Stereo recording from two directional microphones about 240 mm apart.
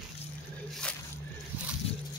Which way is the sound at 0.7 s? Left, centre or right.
Centre.